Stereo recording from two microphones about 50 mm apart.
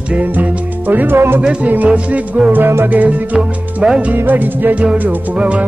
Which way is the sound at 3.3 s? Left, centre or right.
Centre.